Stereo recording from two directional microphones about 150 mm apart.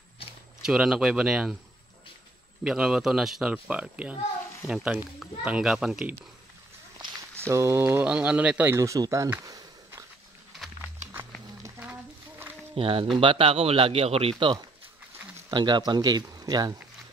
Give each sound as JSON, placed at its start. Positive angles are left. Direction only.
{"t": 0.7, "sound": "speech", "side_deg": -5}
{"t": 2.6, "sound": "speech", "side_deg": -5}
{"t": 7.4, "sound": "speech", "side_deg": -20}
{"t": 11.8, "sound": "a sound", "side_deg": -10}
{"t": 12.7, "sound": "speech", "side_deg": -40}